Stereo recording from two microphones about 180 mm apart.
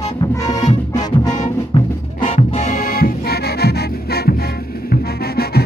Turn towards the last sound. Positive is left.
turn(degrees=60)  # may be behind; listen again after turning